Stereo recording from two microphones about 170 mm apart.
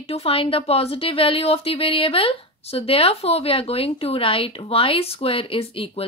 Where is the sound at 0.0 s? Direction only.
35° left (ahead or behind).